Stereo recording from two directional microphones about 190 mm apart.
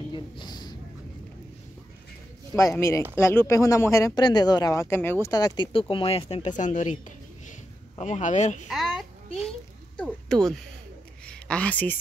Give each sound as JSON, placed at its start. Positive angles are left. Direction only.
{"t": 0.1, "sound": "a sound", "side_deg": 25}
{"t": 2.5, "sound": "speech", "side_deg": 15}
{"t": 8.0, "sound": "speech", "side_deg": 40}
{"t": 8.6, "sound": "speech", "side_deg": 0}
{"t": 9.9, "sound": "speech", "side_deg": 5}